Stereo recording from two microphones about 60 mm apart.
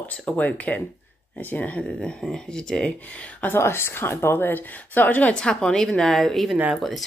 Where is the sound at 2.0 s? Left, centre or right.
Centre.